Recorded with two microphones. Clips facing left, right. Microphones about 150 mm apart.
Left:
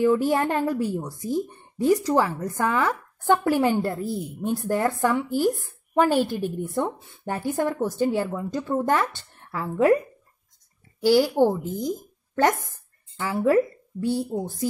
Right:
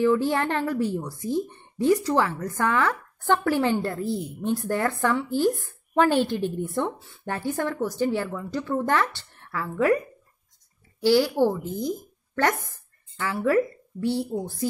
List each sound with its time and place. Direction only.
0.0 s a woman's voice: 15° left (ahead or behind)
11.3 s a woman's voice: 15° left (ahead or behind)
13.2 s speech: 20° left (ahead or behind)